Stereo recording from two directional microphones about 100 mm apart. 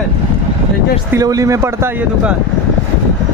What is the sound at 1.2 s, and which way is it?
Speech, 35° right (ahead or behind).